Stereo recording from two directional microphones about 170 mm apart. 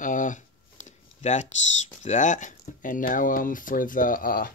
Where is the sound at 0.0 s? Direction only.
50° left (ahead or behind).